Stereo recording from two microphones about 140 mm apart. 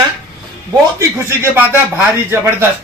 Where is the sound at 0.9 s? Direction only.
20° right (ahead or behind).